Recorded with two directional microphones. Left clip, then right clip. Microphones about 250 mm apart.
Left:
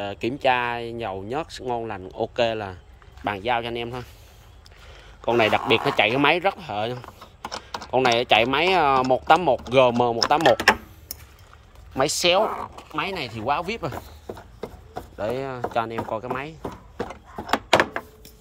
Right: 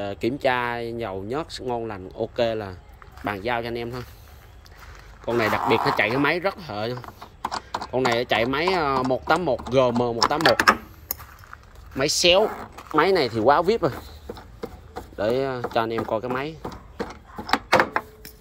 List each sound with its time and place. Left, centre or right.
0.0 s speech: centre
5.2 s speech: centre
12.0 s speech: centre
12.9 s speech: centre
13.2 s speech: centre
13.5 s speech: centre
15.1 s speech: centre
16.9 s a sound: left
17.5 s door: centre